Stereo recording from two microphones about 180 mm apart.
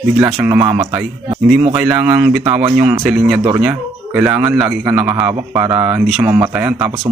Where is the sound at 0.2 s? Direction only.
10° right (ahead or behind).